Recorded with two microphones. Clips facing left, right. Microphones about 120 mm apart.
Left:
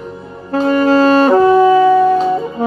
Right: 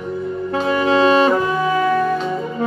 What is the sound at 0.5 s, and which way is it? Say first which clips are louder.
Saxophone: left 6 dB; 40° left (ahead or behind).